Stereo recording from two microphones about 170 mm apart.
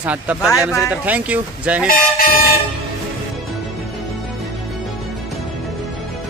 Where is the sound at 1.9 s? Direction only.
60° left (ahead or behind).